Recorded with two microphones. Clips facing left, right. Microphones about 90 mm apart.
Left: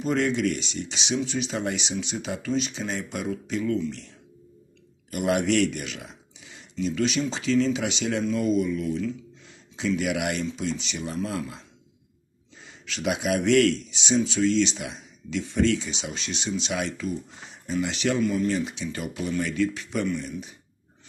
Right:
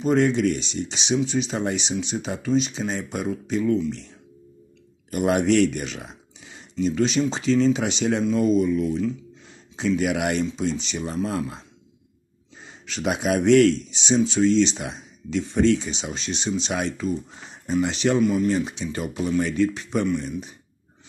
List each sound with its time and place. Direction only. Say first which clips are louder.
0.0 s speech: right 4 dB; 25° right (ahead or behind)
5.1 s speech: right 4 dB; 35° right (ahead or behind)
9.8 s speech: right 3 dB; 35° right (ahead or behind)
12.8 s speech: right 2 dB; 35° right (ahead or behind)